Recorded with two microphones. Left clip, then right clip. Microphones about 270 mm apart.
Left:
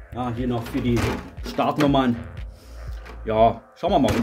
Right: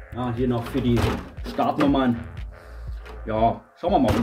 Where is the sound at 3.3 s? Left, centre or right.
Left.